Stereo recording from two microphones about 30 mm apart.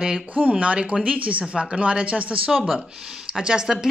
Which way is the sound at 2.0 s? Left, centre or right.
Right.